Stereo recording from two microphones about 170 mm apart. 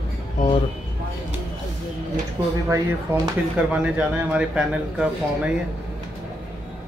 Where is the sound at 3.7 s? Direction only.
10° right (ahead or behind).